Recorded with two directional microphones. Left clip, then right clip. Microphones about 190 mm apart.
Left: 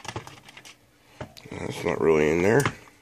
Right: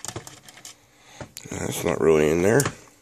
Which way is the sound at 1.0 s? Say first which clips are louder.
Right 1 dB; 35° right (ahead or behind).